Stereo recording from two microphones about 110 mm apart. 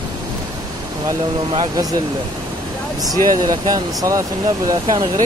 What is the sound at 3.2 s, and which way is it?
Speech, 35° right (ahead or behind).